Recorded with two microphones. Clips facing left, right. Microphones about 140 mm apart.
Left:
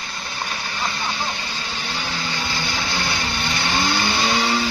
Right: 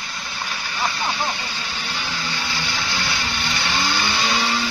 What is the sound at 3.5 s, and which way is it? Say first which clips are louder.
Vehicle: left 2 dB; 25° left (ahead or behind).